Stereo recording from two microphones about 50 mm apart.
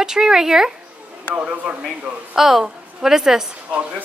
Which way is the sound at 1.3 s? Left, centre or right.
Right.